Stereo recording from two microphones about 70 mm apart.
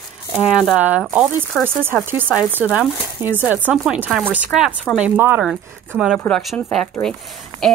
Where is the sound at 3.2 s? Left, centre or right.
Right.